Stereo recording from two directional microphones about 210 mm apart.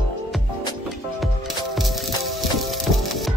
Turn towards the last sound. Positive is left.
turn(degrees=0)  # may be behind; listen again after turning